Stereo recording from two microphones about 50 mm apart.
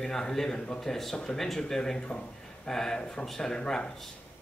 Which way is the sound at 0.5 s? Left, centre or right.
Centre.